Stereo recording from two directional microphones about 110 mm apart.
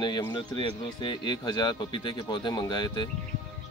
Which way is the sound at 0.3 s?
45° left (ahead or behind).